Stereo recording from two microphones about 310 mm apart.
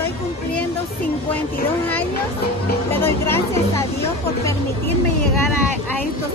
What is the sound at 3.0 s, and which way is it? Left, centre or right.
Speech, centre.